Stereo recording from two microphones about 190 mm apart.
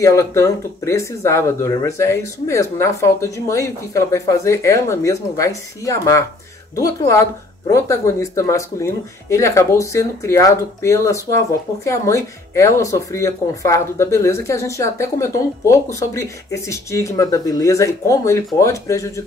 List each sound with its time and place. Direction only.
0.0 s speech: 15° left (ahead or behind)